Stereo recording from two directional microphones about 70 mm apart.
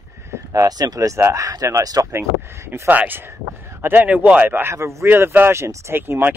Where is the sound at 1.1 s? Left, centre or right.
Right.